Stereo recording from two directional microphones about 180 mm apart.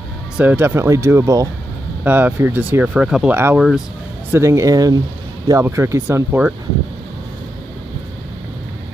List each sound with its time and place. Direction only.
0.4 s speech: 10° right (ahead or behind)
4.3 s speech: 15° right (ahead or behind)